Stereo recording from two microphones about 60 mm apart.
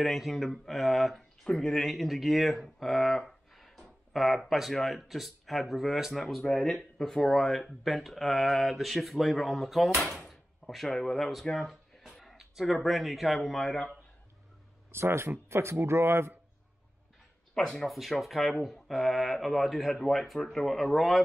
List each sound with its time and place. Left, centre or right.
0.0 s speech: centre
12.4 s speech: centre
14.9 s speech: right
17.8 s speech: centre